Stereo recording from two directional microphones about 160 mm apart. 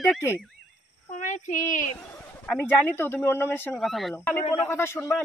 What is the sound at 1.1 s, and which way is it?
Speech, 50° left (ahead or behind).